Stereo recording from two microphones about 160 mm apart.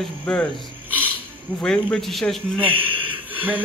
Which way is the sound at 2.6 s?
10° right (ahead or behind).